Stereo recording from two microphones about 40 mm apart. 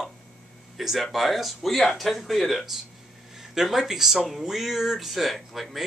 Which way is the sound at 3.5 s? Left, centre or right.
Centre.